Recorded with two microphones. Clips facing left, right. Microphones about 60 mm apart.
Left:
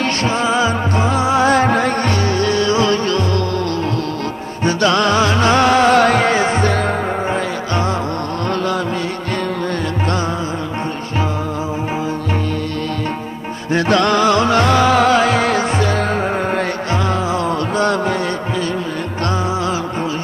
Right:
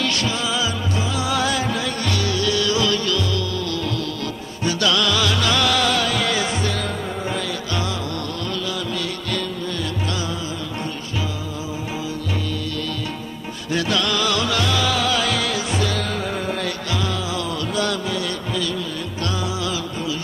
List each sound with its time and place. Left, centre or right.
0.0 s music: left
1.6 s music: left
4.6 s music: left
13.7 s music: left